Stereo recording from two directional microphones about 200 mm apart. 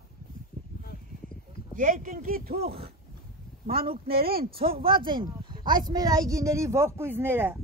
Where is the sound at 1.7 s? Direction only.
40° right (ahead or behind).